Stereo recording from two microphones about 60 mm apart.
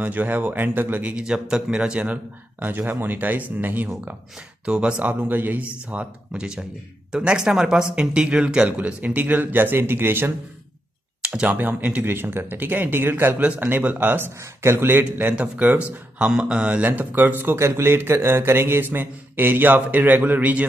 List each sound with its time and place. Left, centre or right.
0.0 s a man's voice: right
1.0 s speech: centre
2.6 s a man's voice: right
4.6 s speech: centre
8.6 s a man's voice: right
11.4 s a man's voice: right
13.4 s a man's voice: right
14.4 s a man's voice: right
15.3 s speech: centre
15.6 s speech: right
17.6 s a man's voice: right